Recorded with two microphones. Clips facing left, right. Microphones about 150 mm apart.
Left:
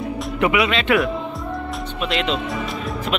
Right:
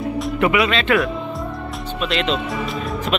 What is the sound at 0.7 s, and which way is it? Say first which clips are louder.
Speech: even; 15° left (ahead or behind).